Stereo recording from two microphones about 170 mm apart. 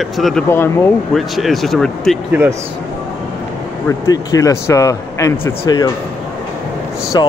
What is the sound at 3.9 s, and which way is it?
Speech, 20° left (ahead or behind).